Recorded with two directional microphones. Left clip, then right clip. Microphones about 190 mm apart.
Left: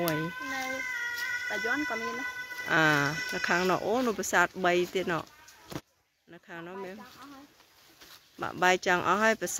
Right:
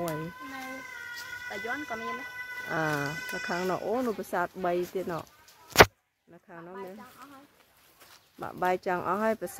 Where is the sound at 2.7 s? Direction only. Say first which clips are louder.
Left 6 dB; 10° left (ahead or behind).